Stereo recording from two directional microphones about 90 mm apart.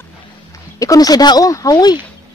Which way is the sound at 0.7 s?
40° left (ahead or behind).